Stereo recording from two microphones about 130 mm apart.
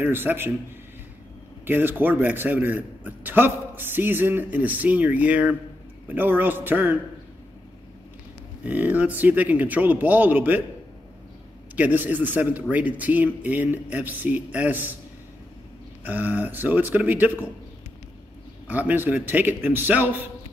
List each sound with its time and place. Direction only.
0.0 s a man's voice: 15° right (ahead or behind)
1.7 s a man's voice: 15° right (ahead or behind)
8.6 s a man's voice: 10° right (ahead or behind)
11.7 s a man's voice: 15° right (ahead or behind)
16.0 s a man's voice: 15° right (ahead or behind)
18.7 s a man's voice: 15° right (ahead or behind)